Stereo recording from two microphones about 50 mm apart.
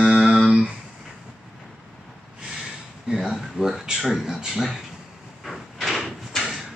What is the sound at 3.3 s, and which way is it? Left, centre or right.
Speech, centre.